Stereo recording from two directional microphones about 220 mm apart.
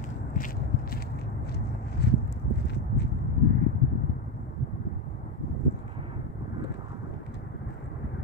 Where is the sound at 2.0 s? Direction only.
50° left (ahead or behind).